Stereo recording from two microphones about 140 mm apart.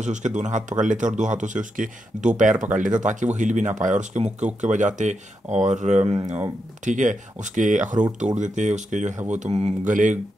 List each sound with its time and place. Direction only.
0.0 s speech: 60° right (ahead or behind)